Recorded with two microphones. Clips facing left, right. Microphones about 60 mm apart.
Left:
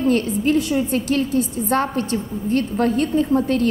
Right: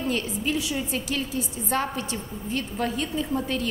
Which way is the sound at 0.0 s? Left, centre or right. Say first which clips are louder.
Left 9 dB; left.